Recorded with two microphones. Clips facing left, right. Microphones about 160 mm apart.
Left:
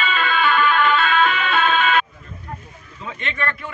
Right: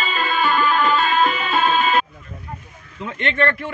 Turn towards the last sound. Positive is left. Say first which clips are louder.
# right 7 dB
turn(degrees=-70)  # may be behind; listen again after turning